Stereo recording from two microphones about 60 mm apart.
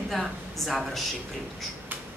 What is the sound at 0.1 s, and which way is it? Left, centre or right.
Speech, centre.